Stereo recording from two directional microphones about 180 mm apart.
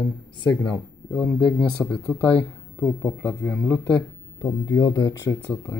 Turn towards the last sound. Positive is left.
turn(degrees=15)  # may be behind; listen again after turning